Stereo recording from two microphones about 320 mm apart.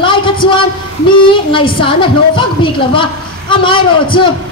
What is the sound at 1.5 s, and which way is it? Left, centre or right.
A woman's voice, centre.